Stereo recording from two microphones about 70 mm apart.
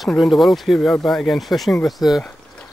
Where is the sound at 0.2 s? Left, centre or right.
Centre.